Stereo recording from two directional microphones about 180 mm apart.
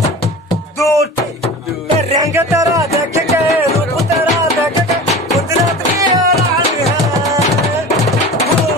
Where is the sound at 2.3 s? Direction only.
15° right (ahead or behind).